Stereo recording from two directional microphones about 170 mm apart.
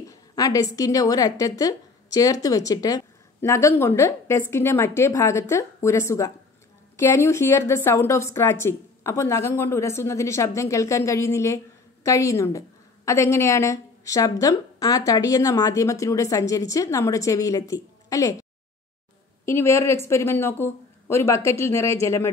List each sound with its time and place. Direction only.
0.1 s a woman's voice: 20° left (ahead or behind)
19.4 s a woman's voice: 15° left (ahead or behind)